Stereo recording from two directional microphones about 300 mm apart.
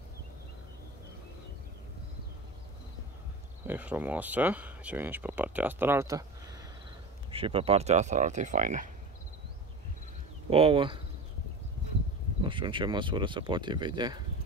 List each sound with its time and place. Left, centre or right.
3.6 s speech: centre
7.2 s speech: centre
10.5 s speech: centre
12.4 s speech: centre